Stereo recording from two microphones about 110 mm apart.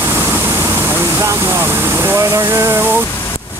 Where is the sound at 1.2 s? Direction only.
20° right (ahead or behind).